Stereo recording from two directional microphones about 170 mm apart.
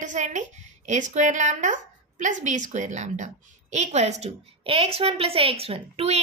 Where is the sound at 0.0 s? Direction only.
45° right (ahead or behind).